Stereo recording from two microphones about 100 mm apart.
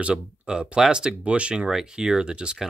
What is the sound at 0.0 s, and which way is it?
Speech, 10° right (ahead or behind).